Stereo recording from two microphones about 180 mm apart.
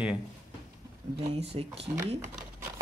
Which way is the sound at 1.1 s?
35° right (ahead or behind).